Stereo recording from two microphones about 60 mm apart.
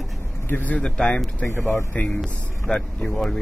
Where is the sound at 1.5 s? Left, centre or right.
Left.